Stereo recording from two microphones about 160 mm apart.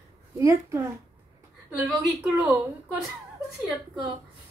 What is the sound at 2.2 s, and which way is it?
Speech, 5° right (ahead or behind).